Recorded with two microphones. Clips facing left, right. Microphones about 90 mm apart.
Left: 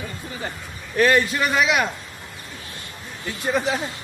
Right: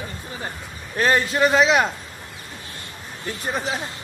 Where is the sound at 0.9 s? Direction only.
30° right (ahead or behind).